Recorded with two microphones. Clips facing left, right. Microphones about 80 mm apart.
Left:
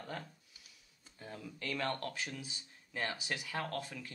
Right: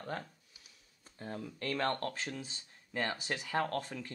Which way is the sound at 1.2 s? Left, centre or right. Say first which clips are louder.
Right 4 dB; right.